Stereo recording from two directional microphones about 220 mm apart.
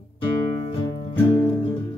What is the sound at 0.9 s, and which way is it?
Music, 20° left (ahead or behind).